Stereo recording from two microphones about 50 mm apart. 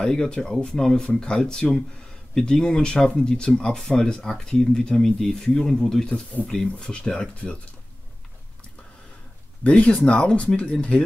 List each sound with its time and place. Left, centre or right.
0.0 s speech: centre
9.6 s speech: left